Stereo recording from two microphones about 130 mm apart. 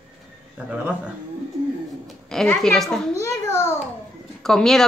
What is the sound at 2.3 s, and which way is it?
Speech, 5° left (ahead or behind).